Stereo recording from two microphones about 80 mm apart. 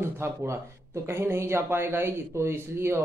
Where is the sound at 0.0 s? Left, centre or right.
Right.